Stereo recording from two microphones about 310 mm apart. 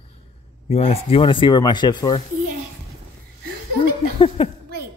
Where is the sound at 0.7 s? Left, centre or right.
Centre.